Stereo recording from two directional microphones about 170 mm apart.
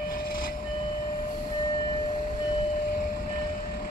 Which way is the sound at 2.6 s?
55° left (ahead or behind).